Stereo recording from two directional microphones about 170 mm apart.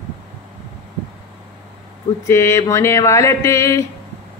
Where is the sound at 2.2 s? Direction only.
15° left (ahead or behind).